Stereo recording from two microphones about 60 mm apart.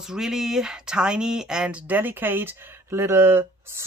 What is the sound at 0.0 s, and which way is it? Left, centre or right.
Speech, centre.